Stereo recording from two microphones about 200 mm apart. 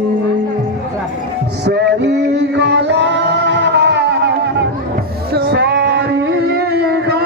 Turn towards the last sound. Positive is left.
turn(degrees=-50)  # may be behind; listen again after turning